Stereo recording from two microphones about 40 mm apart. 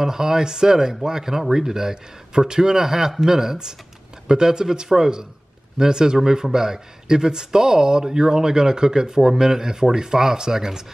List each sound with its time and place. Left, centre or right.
0.0 s speech: centre